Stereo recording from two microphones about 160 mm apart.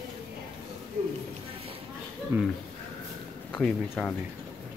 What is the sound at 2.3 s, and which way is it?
Speech, 15° right (ahead or behind).